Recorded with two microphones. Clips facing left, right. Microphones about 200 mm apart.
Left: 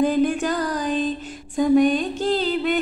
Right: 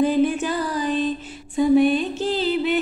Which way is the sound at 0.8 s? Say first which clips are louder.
Right 1 dB; 45° left (ahead or behind).